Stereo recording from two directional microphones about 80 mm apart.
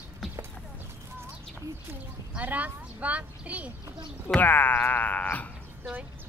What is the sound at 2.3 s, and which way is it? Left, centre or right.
A child's voice, centre.